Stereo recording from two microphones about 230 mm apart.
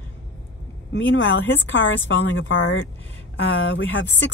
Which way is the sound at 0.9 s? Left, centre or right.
Left.